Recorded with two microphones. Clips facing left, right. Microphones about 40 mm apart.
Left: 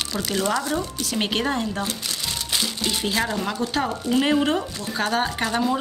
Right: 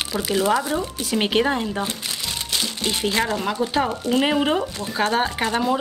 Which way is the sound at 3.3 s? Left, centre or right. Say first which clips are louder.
Right 3 dB; centre.